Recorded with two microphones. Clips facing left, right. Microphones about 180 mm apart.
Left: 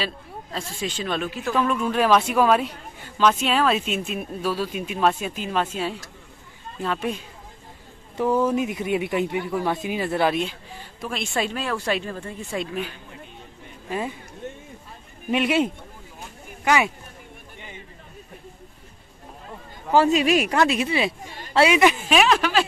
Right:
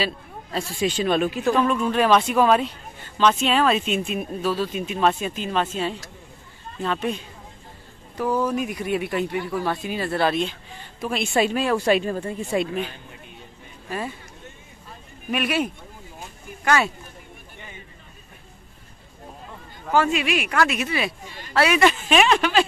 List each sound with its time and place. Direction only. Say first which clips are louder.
0.0 s speech: right 3 dB; 5° right (ahead or behind)
1.5 s speech: right 1 dB; centre (ahead or behind)
8.2 s speech: left 2 dB; 25° left (ahead or behind)
11.0 s speech: right 5 dB; 5° right (ahead or behind)
13.8 s speech: left 2 dB; 15° left (ahead or behind)
15.3 s speech: left 3 dB; 25° left (ahead or behind)
19.9 s speech: left 3 dB; 35° left (ahead or behind)
20.5 s speech: left 2 dB; 30° left (ahead or behind)
22.1 s speech: right 1 dB; centre (ahead or behind)